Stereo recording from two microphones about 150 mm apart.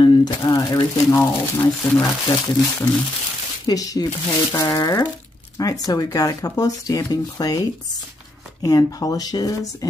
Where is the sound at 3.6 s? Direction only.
25° left (ahead or behind).